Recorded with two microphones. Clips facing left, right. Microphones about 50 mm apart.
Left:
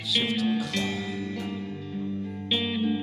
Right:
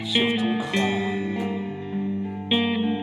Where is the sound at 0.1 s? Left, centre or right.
Right.